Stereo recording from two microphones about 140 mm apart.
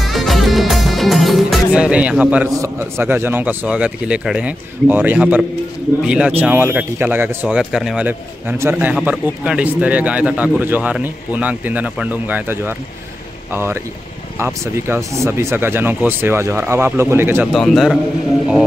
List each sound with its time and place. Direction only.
0.0 s music: centre (ahead or behind)
2.5 s speech: 20° right (ahead or behind)
17.5 s a man's voice: centre (ahead or behind)